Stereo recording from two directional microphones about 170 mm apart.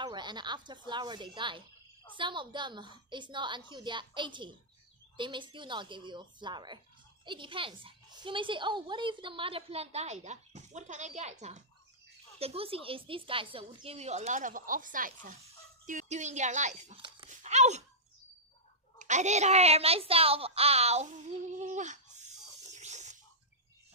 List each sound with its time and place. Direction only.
0.0 s a woman's voice: 25° right (ahead or behind); by 17.0 s 45° right (ahead or behind)
17.4 s a sound: 40° right (ahead or behind)
18.9 s a woman's voice: 45° right (ahead or behind)